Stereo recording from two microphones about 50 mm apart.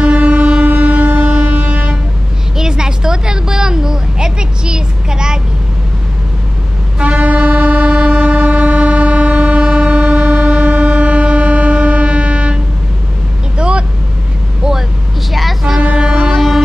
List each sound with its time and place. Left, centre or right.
0.0 s train: right
2.5 s a sound: centre
7.0 s train: right
13.6 s vehicle: right
14.6 s vehicle: centre
15.8 s music: right
16.3 s music: centre